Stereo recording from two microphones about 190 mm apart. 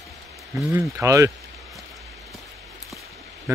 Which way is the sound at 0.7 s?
15° right (ahead or behind).